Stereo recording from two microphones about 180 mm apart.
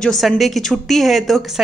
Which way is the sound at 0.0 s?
5° left (ahead or behind).